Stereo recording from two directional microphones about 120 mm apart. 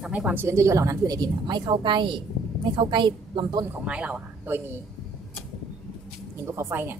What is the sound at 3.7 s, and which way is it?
Speech, 10° right (ahead or behind).